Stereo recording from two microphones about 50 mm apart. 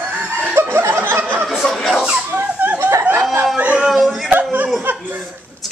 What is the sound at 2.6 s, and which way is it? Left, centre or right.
Speech, right.